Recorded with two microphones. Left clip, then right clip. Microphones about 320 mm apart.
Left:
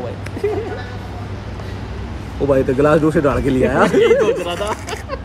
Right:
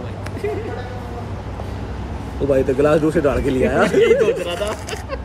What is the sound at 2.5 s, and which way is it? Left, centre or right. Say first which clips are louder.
Speech: left 2 dB; centre.